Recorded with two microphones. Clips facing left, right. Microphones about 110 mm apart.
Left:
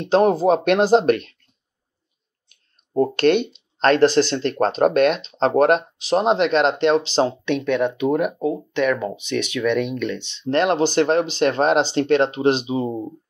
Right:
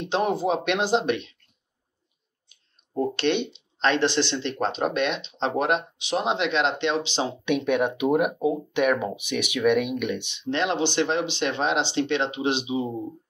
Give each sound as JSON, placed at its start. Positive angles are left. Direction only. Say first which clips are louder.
{"t": 0.1, "sound": "speech", "louder": "left 8 dB", "side_deg": 40}
{"t": 2.5, "sound": "speech", "louder": "left 8 dB", "side_deg": 45}
{"t": 7.4, "sound": "speech", "louder": "left 2 dB", "side_deg": -10}
{"t": 10.4, "sound": "speech", "louder": "left 7 dB", "side_deg": 45}